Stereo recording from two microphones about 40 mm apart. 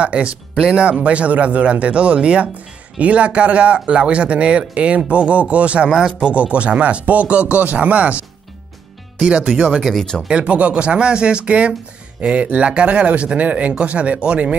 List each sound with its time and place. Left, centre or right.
0.0 s speech: right
5.9 s speech: centre
6.2 s speech: right
9.2 s speech: right
9.9 s speech: centre
10.2 s speech: right